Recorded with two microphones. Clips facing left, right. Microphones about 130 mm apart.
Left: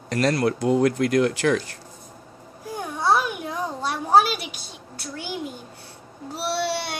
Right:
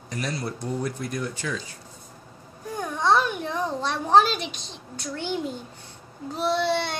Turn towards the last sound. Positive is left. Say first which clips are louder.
# right 2 dB
turn(degrees=10)  # may be behind; listen again after turning